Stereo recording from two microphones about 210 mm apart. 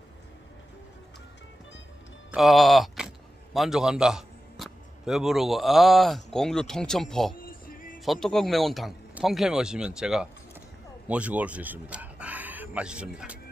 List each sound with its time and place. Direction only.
2.3 s a man's voice: centre (ahead or behind)
7.3 s music: 40° left (ahead or behind)
8.0 s a man's voice: centre (ahead or behind)